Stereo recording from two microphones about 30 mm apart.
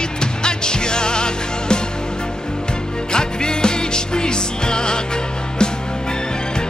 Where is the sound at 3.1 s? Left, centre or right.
Left.